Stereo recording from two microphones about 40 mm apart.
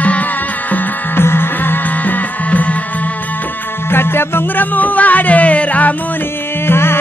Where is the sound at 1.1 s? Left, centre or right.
Left.